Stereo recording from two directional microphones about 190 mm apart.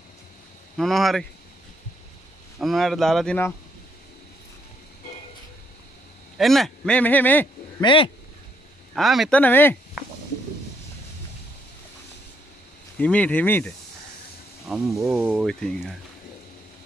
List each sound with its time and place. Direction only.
0.7 s speech: centre (ahead or behind)
2.6 s speech: centre (ahead or behind)
6.3 s speech: centre (ahead or behind)
7.8 s speech: 25° left (ahead or behind)
8.9 s speech: centre (ahead or behind)
12.9 s speech: 10° left (ahead or behind)
14.7 s speech: centre (ahead or behind)